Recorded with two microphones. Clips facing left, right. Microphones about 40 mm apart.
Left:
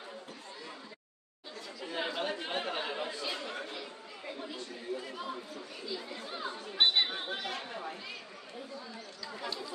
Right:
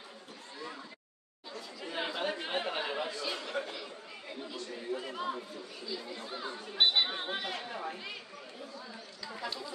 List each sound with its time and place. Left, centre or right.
1.8 s chatter: centre
3.1 s chatter: centre
4.9 s speech: centre
6.2 s speech: centre
7.1 s speech: centre